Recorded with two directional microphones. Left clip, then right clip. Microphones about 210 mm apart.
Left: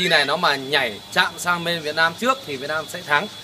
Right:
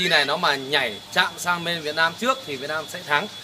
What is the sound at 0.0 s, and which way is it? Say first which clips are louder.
A man's voice: left 2 dB; centre (ahead or behind).